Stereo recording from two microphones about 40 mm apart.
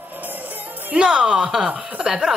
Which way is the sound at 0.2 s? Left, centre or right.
Right.